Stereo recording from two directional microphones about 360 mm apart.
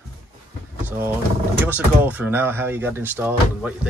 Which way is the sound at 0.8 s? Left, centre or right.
Centre.